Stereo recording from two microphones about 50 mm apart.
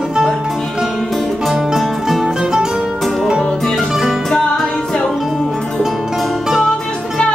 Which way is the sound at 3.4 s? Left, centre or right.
Centre.